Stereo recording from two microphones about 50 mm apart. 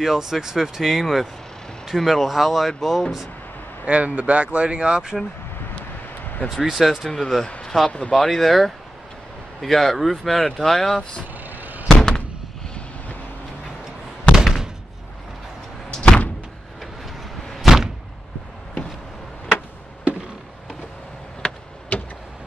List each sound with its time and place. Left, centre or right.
0.0 s speech: centre
3.8 s speech: right
6.5 s speech: centre
7.9 s speech: left
8.2 s speech: centre
11.4 s fireworks: right
11.9 s slam: centre
14.3 s a sound: centre
15.9 s door: centre
17.6 s door: centre
21.4 s a sound: left